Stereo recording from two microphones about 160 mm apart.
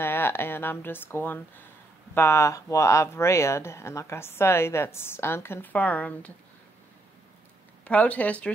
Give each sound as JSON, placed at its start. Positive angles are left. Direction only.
{"t": 0.0, "sound": "speech", "side_deg": 15}
{"t": 7.8, "sound": "speech", "side_deg": 10}